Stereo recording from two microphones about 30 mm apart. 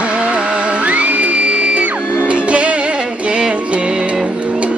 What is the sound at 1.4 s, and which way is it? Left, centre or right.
Music, right.